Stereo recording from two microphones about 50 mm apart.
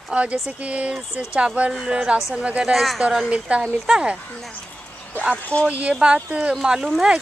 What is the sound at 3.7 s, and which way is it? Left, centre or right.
Speech, centre.